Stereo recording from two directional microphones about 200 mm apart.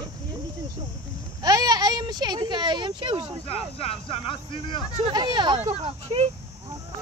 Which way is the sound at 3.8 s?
30° left (ahead or behind).